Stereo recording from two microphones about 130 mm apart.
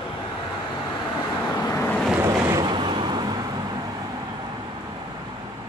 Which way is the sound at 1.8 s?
10° left (ahead or behind).